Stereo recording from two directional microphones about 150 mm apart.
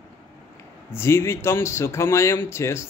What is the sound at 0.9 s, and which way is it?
A man's voice, 15° left (ahead or behind).